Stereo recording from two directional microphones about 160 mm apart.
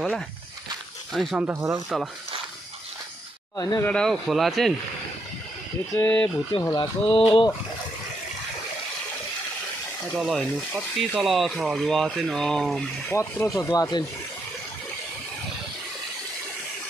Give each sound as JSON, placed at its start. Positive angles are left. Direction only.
{"t": 1.1, "sound": "speech", "side_deg": 0}
{"t": 1.4, "sound": "speech", "side_deg": -15}
{"t": 3.5, "sound": "speech", "side_deg": 20}
{"t": 3.8, "sound": "speech", "side_deg": 5}
{"t": 5.9, "sound": "speech", "side_deg": 10}
{"t": 6.6, "sound": "speech", "side_deg": 25}
{"t": 10.1, "sound": "speech", "side_deg": 0}
{"t": 13.1, "sound": "speech", "side_deg": 15}